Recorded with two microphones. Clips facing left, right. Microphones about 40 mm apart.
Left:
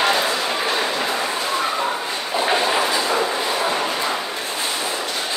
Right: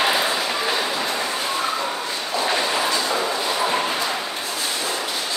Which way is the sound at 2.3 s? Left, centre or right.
Centre.